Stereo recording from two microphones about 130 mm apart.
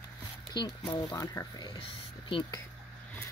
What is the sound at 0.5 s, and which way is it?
Speech, 35° left (ahead or behind).